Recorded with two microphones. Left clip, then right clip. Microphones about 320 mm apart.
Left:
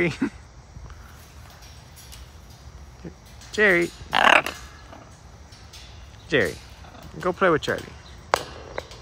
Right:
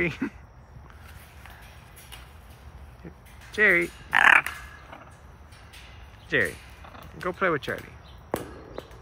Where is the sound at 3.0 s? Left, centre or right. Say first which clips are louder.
Left 5 dB; centre.